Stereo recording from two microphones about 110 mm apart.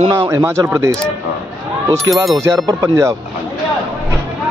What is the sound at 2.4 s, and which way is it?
Speech, 30° right (ahead or behind).